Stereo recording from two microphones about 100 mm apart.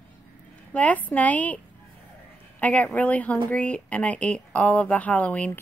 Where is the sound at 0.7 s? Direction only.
15° left (ahead or behind).